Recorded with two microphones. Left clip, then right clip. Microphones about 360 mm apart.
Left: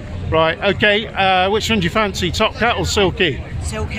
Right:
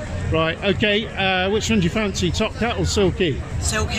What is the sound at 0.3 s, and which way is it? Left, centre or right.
Speech, left.